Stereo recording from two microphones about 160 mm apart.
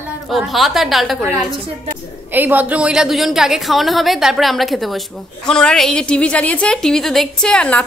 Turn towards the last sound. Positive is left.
turn(degrees=5)  # may be behind; listen again after turning